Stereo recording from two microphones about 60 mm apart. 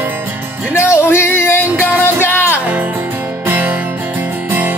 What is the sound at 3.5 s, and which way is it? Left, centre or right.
Music, right.